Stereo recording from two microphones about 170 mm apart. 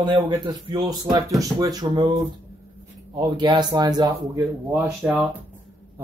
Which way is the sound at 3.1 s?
25° right (ahead or behind).